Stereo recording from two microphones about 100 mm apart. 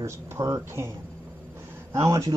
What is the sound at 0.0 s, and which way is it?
Speech, 30° right (ahead or behind).